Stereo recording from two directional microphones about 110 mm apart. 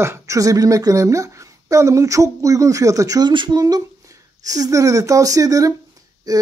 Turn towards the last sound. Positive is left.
turn(degrees=-35)  # may be behind; listen again after turning